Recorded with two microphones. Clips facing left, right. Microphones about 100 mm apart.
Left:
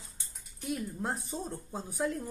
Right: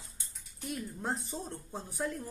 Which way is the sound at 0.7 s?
Centre (ahead or behind).